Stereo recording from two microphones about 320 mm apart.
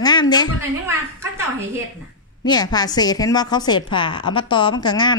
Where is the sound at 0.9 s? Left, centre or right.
Centre.